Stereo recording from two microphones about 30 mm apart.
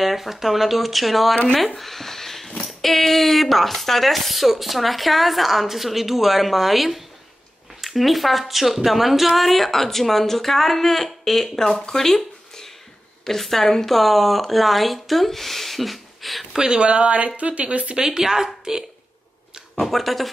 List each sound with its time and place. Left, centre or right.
0.0 s speech: centre
1.8 s a sound: centre
2.6 s speech: centre
11.8 s a sound: centre
13.4 s a woman's voice: centre
16.5 s a woman's voice: right
17.9 s a woman's voice: right
19.7 s speech: centre